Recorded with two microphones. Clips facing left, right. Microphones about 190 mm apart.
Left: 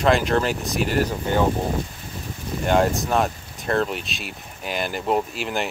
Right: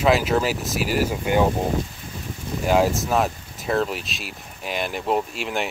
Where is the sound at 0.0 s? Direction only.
5° right (ahead or behind).